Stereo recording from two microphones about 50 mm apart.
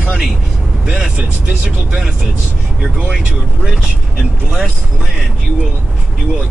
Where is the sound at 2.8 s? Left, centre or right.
Right.